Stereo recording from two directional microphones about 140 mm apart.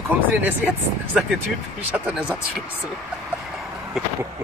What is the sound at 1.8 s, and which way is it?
Speech, 10° right (ahead or behind).